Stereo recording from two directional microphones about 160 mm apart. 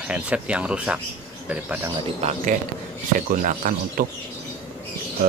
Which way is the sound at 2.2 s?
45° right (ahead or behind).